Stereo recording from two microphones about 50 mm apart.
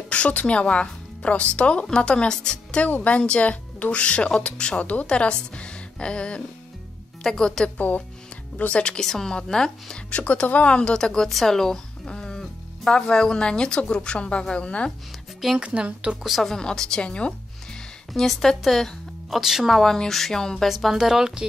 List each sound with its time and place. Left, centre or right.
0.1 s a woman's voice: left
7.7 s speech: left
9.0 s a woman's voice: centre
10.1 s speech: left
15.6 s a woman's voice: right
16.4 s a woman's voice: centre
18.1 s speech: centre
19.3 s speech: centre
19.7 s a woman's voice: centre
20.6 s speech: centre